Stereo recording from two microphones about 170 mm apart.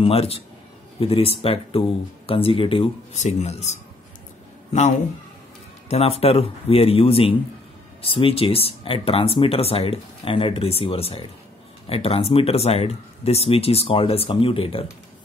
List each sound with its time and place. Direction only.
0.0 s speech: 35° left (ahead or behind)
5.9 s speech: 35° left (ahead or behind)